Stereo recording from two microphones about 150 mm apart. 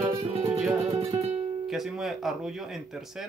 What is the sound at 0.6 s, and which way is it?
Speech, centre (ahead or behind).